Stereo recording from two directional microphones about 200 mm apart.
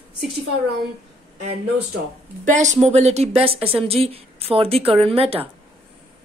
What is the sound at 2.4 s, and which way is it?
A woman's voice, 35° right (ahead or behind).